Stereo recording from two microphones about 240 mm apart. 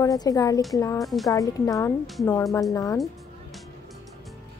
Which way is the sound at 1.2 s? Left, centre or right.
Centre.